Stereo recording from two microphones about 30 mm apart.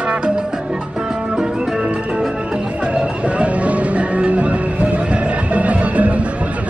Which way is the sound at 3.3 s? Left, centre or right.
Right.